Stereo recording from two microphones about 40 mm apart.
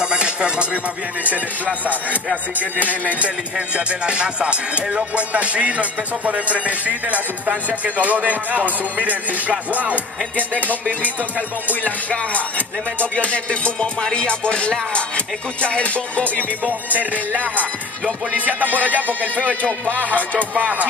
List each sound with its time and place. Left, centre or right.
0.0 s music: right
3.1 s speech: right
11.6 s music: left
16.6 s music: right
20.3 s speech: right